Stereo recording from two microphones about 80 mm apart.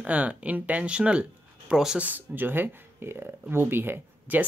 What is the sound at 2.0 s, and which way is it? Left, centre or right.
Speech, right.